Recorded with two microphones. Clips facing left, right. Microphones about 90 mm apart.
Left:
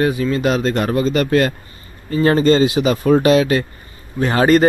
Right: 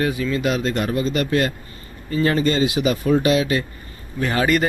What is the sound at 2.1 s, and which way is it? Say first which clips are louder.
Speech: left 6 dB; 35° left (ahead or behind).